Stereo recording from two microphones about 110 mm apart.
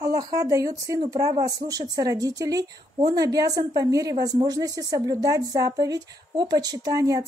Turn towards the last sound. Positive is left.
turn(degrees=-30)  # may be behind; listen again after turning